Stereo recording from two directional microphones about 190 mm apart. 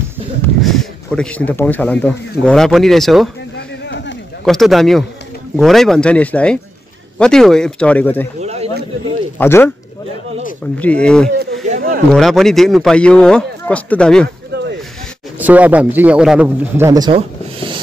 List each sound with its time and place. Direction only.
0.6 s speech: centre (ahead or behind)
3.5 s a sound: 65° left (ahead or behind)
4.5 s speech: centre (ahead or behind)
8.4 s speech: 35° right (ahead or behind)
9.4 s speech: 10° left (ahead or behind)
11.6 s a sound: 45° right (ahead or behind)
12.1 s speech: centre (ahead or behind)
14.5 s a sound: 65° right (ahead or behind)
15.3 s a man's voice: 10° right (ahead or behind)
17.1 s rub: 30° right (ahead or behind)